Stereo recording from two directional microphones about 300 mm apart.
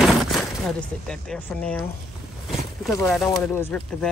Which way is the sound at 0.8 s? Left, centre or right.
Centre.